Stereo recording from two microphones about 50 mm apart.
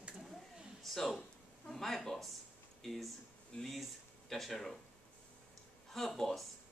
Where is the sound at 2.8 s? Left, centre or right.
Centre.